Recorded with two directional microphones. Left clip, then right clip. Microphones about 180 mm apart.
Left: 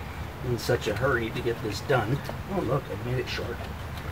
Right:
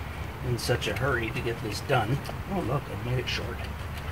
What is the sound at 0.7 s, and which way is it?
Speech, 10° left (ahead or behind).